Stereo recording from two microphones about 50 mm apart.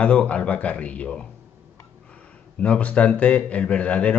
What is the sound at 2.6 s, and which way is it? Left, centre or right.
A man's voice, left.